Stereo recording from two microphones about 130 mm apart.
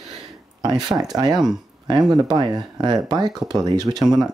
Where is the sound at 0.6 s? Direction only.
30° right (ahead or behind).